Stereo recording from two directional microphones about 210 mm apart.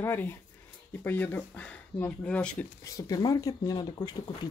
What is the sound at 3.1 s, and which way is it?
Speech, 15° left (ahead or behind).